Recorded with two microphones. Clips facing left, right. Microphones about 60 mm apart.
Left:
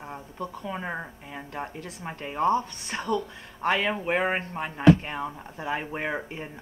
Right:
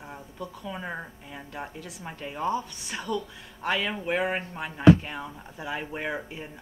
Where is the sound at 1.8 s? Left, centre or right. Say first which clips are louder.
Left 2 dB; left.